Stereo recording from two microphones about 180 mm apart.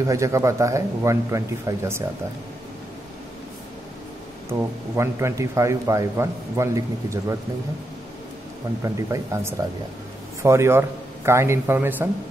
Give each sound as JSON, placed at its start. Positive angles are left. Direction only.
{"t": 0.0, "sound": "a man's voice", "side_deg": -15}
{"t": 4.5, "sound": "a man's voice", "side_deg": -15}
{"t": 8.8, "sound": "a man's voice", "side_deg": -15}